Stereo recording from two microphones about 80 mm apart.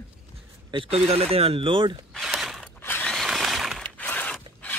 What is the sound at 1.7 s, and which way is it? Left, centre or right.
Speech, right.